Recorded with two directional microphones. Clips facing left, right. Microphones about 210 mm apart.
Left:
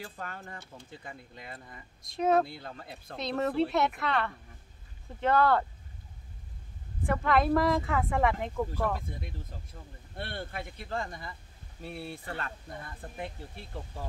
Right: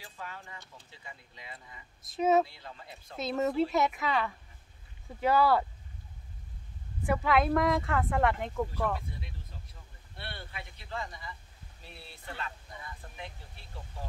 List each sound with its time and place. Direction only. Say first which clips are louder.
0.0 s speech: left 4 dB; 50° left (ahead or behind)
2.0 s speech: even; centre (ahead or behind)
2.4 s speech: left 5 dB; 55° left (ahead or behind)
3.2 s speech: even; 5° right (ahead or behind)
7.1 s speech: left 1 dB; centre (ahead or behind)
9.8 s speech: left 12 dB; 50° left (ahead or behind)